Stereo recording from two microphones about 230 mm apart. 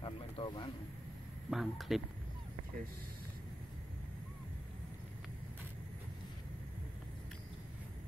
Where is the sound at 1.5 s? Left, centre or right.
Centre.